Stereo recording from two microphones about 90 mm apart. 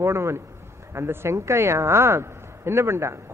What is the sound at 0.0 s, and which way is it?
A man's voice, 30° right (ahead or behind).